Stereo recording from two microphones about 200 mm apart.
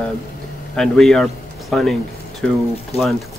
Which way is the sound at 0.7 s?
Centre (ahead or behind).